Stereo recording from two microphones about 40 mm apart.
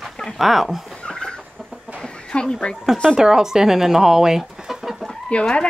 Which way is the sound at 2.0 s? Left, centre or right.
Left.